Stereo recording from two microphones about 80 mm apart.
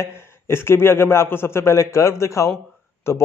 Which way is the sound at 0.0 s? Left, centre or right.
Left.